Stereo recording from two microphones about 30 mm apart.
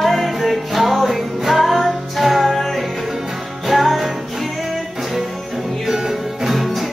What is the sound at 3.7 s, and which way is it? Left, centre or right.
Music, centre.